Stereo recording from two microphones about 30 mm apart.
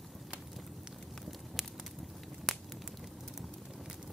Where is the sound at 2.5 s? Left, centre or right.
Centre.